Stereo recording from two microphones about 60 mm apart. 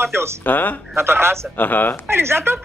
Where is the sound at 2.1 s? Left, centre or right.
Right.